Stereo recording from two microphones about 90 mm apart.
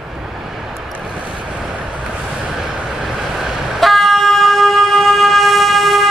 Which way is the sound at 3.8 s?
Centre (ahead or behind).